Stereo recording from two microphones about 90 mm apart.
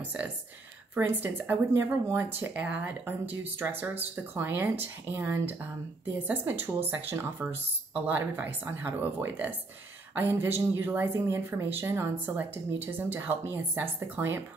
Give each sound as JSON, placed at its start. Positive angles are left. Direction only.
{"t": 0.9, "sound": "speech", "side_deg": -20}